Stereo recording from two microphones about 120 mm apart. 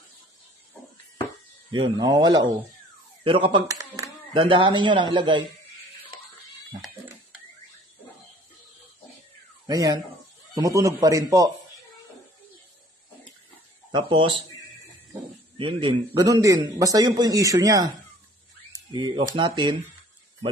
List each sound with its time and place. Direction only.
1.7 s a man's voice: 40° right (ahead or behind)
3.3 s speech: 45° right (ahead or behind)
3.6 s a sound: 30° right (ahead or behind)
4.3 s speech: 45° right (ahead or behind)
9.7 s a man's voice: 30° right (ahead or behind)
13.9 s speech: 45° right (ahead or behind)
15.5 s speech: 45° right (ahead or behind)
16.2 s a man's voice: 30° right (ahead or behind)